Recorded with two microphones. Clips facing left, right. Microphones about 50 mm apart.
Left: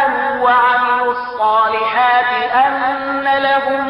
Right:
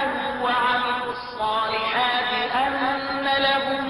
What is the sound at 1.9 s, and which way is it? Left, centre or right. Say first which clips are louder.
Chant: left 9 dB; left.